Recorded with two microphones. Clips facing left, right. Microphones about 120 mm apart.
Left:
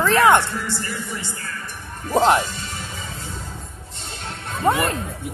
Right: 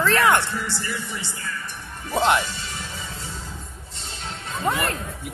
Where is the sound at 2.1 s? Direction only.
35° left (ahead or behind).